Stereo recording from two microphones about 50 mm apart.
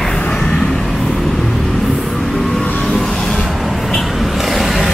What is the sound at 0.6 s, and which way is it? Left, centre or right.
Vehicle, centre.